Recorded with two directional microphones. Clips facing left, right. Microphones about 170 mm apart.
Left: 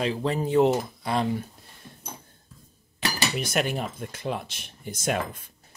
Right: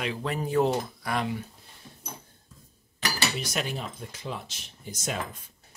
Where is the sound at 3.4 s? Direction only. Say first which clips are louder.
Left 5 dB; 55° left (ahead or behind).